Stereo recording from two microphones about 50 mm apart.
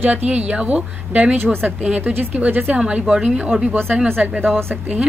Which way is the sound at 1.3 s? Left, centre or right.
Right.